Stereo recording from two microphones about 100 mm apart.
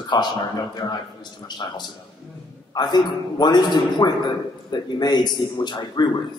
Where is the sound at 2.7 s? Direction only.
45° left (ahead or behind).